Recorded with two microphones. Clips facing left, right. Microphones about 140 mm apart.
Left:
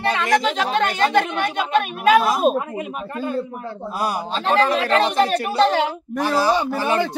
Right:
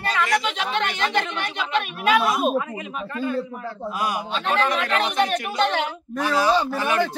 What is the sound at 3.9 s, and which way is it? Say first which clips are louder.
A woman's voice: left 3 dB; 35° left (ahead or behind).